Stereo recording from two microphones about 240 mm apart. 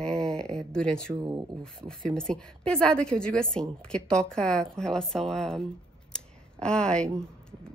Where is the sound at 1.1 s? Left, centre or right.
Centre.